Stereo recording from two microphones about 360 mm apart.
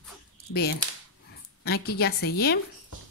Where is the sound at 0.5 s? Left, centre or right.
Left.